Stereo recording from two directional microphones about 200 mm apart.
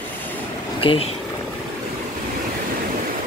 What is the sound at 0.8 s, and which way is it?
Speech, 30° left (ahead or behind).